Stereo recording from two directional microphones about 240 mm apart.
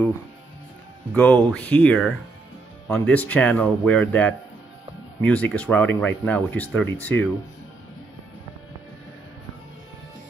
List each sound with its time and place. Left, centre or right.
1.1 s speech: centre